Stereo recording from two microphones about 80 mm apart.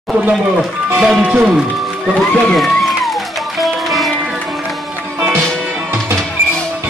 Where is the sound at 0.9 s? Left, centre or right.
Centre.